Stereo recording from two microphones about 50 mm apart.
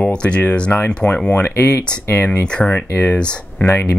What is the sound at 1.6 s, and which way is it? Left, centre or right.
Speech, left.